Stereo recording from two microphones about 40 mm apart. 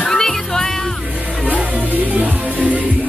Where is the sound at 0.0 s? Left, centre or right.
Centre.